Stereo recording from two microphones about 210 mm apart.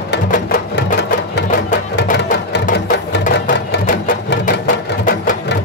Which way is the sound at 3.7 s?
45° left (ahead or behind).